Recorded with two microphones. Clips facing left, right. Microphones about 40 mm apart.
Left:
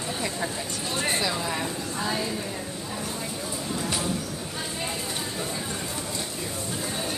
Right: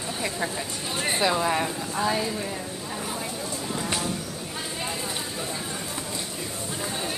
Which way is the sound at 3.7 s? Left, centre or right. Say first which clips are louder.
Even; centre.